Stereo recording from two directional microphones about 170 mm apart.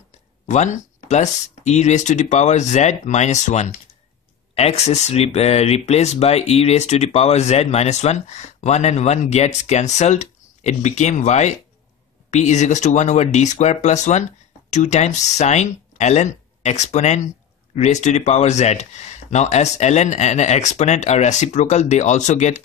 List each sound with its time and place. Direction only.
0.5 s speech: 45° left (ahead or behind)